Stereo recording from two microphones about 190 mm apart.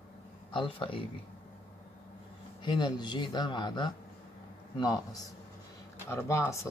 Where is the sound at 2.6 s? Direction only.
25° left (ahead or behind).